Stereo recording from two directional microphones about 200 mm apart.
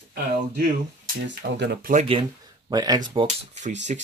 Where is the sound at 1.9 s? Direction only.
35° right (ahead or behind).